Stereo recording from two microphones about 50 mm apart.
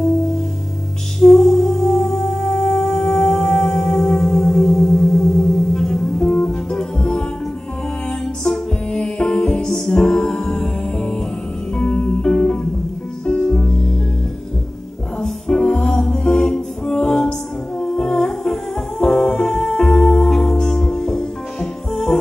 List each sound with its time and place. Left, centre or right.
1.2 s music: centre
8.9 s music: centre
15.2 s music: centre